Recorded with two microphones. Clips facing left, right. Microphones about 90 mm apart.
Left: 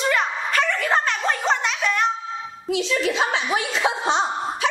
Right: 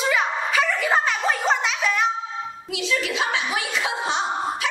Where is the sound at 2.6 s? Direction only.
35° left (ahead or behind).